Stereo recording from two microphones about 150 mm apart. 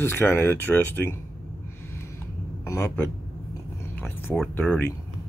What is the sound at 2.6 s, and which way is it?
Speech, 20° left (ahead or behind).